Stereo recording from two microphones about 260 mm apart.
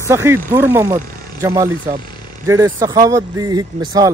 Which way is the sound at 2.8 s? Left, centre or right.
Centre.